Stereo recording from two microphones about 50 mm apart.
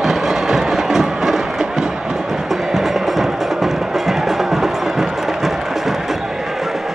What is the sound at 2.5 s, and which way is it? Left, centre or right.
Music, centre.